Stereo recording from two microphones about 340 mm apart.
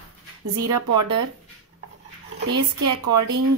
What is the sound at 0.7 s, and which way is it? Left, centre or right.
Speech, right.